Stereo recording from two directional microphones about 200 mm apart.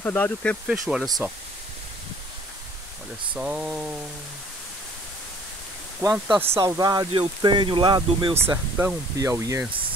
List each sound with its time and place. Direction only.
0.0 s speech: 10° left (ahead or behind)
3.3 s speech: 5° right (ahead or behind)
5.9 s speech: 5° right (ahead or behind)
6.5 s speech: 15° right (ahead or behind)
8.5 s speech: 10° right (ahead or behind)